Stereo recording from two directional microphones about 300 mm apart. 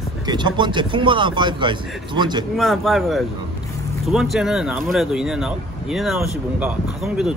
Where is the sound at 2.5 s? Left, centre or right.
Centre.